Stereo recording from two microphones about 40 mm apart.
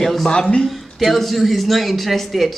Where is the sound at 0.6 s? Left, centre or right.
Centre.